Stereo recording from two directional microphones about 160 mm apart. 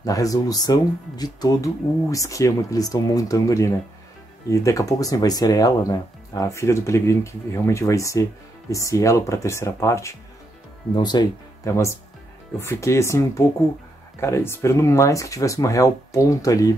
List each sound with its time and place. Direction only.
0.0 s speech: 20° left (ahead or behind)